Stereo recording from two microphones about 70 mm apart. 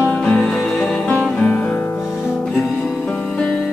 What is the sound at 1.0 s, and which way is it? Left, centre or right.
Music, centre.